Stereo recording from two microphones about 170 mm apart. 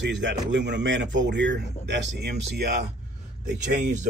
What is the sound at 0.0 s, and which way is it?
Speech, 90° right.